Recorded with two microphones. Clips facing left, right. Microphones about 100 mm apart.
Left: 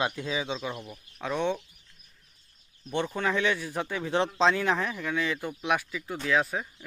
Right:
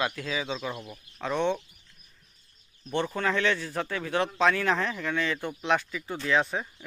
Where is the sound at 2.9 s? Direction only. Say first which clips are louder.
Right 1 dB; 15° left (ahead or behind).